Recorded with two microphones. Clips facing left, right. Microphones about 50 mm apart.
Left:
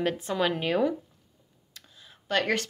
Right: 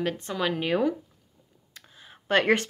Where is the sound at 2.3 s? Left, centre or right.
Right.